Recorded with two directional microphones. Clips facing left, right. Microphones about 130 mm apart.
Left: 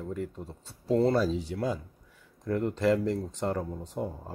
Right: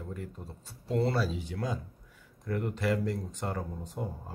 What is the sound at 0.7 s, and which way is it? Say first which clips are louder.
Speech: left 5 dB; 35° left (ahead or behind).